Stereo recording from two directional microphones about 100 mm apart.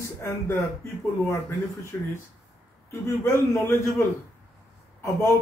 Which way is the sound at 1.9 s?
30° left (ahead or behind).